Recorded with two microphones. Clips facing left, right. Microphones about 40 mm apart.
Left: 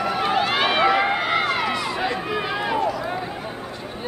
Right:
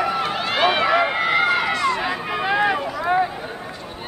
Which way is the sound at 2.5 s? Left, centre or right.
Right.